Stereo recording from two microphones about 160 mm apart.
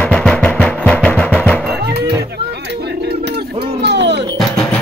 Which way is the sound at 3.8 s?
90° right.